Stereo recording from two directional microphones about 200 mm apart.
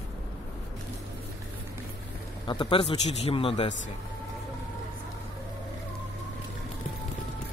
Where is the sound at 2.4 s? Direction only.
25° left (ahead or behind).